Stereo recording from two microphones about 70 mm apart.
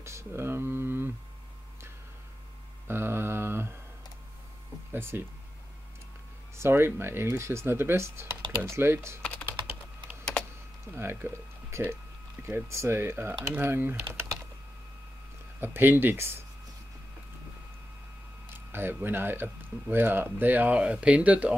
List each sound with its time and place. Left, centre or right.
0.0 s a sound: right
2.9 s mantra: right
4.9 s speech: right
6.5 s speech: right
10.9 s speech: right
15.6 s speech: right
18.7 s speech: right
20.7 s speech: centre